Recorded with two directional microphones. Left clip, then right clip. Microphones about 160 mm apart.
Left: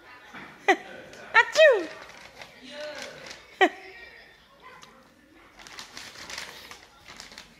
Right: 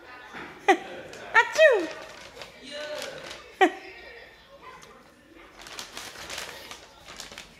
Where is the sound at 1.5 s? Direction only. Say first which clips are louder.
Left 1 dB; 25° left (ahead or behind).